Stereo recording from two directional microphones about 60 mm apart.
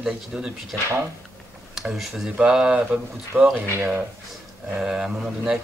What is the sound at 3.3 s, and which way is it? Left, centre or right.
Speech, right.